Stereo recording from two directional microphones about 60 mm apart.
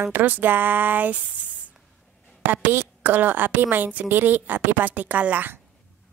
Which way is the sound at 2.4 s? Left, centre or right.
Right.